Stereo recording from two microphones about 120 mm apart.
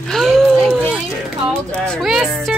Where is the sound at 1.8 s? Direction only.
5° left (ahead or behind).